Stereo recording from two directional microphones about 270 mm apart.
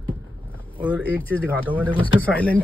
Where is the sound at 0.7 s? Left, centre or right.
Centre.